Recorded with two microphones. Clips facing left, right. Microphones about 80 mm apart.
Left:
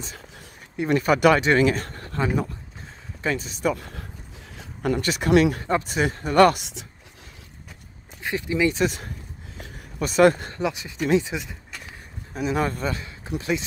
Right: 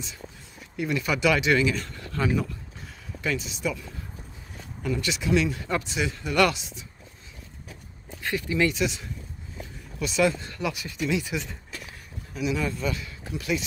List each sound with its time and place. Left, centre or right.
0.8 s speech: left
5.0 s speech: left
5.6 s speech: left
5.9 s speech: left
6.5 s speech: left
8.2 s speech: left
8.6 s speech: left
10.5 s speech: left
11.0 s speech: left
11.2 s speech: centre
12.4 s speech: left
12.8 s speech: left